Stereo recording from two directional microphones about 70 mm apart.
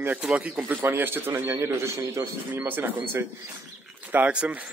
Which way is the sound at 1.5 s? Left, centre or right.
Right.